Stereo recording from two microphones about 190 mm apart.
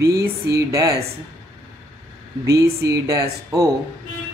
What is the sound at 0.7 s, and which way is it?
Speech, 15° right (ahead or behind).